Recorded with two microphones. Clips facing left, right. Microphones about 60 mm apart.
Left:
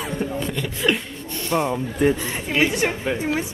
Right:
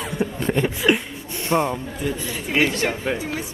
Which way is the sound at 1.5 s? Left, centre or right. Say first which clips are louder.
Right 2 dB; centre.